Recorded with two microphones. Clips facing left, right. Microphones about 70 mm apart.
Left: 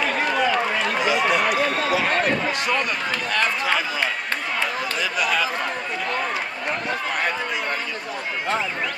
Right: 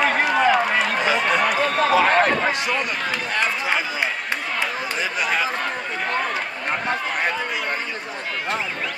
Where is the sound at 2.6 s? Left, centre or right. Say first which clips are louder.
Even; centre.